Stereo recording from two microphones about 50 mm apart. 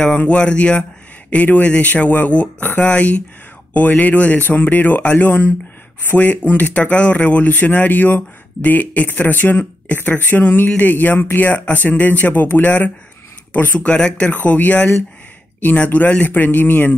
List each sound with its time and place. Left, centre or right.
0.2 s speech: left
13.7 s speech: left
14.3 s speech: left